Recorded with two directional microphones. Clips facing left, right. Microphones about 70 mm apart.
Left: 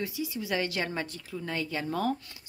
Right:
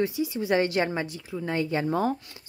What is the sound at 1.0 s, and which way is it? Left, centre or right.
Speech, centre.